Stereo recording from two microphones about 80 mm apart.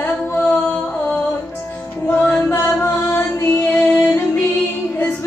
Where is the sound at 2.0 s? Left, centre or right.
Left.